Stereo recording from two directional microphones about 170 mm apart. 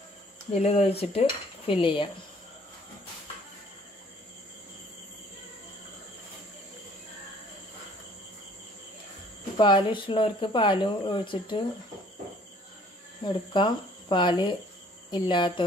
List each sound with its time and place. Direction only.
0.5 s speech: 40° left (ahead or behind)
9.6 s speech: 30° left (ahead or behind)
13.2 s speech: 25° left (ahead or behind)